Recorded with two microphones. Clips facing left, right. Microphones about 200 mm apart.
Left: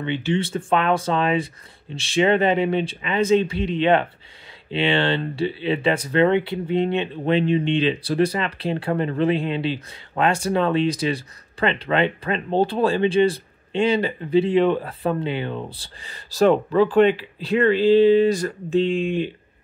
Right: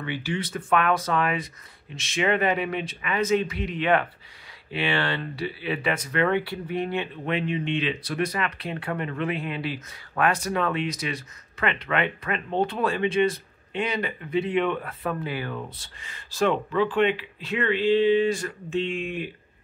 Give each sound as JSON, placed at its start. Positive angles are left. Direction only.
{"t": 0.0, "sound": "speech", "side_deg": 25}